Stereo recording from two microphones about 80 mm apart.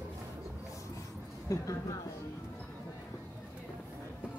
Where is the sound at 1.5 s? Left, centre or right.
Left.